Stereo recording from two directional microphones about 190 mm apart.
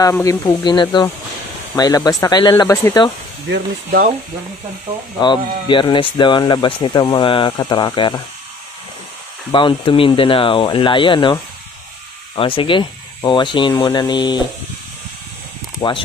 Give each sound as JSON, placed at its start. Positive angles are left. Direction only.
{"t": 0.0, "sound": "speech", "side_deg": 15}
{"t": 3.4, "sound": "speech", "side_deg": -65}
{"t": 5.2, "sound": "speech", "side_deg": 25}
{"t": 9.5, "sound": "speech", "side_deg": 25}
{"t": 12.4, "sound": "speech", "side_deg": 25}
{"t": 15.8, "sound": "speech", "side_deg": 20}